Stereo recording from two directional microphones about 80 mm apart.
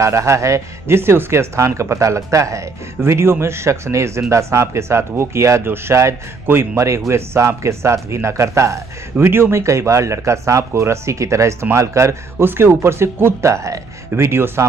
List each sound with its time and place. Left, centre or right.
0.0 s a man's voice: right